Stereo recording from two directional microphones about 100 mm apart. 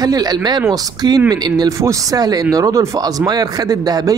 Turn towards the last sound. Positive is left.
turn(degrees=-40)  # may be behind; listen again after turning